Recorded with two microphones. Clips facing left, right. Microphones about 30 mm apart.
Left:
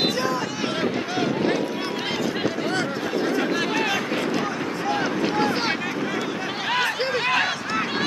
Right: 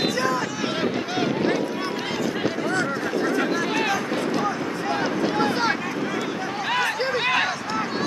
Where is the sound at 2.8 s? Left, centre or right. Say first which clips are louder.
Right 1 dB; centre.